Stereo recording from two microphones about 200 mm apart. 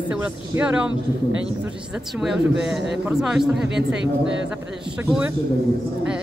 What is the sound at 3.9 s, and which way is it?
Speech, 60° right (ahead or behind).